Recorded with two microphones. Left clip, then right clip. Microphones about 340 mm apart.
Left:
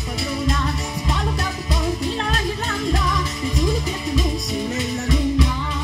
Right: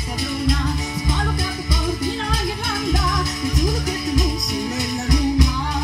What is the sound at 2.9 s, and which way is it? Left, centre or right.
Music, left.